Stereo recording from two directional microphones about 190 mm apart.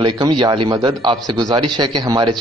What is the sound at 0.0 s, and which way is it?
A man's voice, 25° right (ahead or behind).